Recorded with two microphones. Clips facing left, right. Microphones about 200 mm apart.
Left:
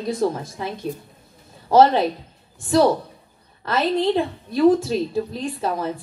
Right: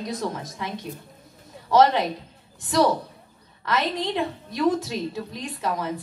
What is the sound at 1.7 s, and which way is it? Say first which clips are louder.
Speech: left 4 dB; 30° left (ahead or behind).